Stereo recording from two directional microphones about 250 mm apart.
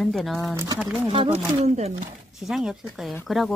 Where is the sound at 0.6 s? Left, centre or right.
Centre.